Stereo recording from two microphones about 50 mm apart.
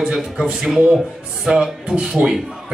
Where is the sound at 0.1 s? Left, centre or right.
Centre.